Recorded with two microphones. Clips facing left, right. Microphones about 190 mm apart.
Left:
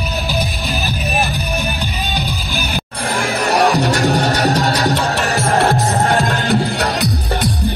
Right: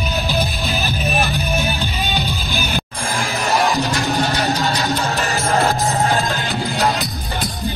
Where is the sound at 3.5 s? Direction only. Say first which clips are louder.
Left 4 dB; 65° left (ahead or behind).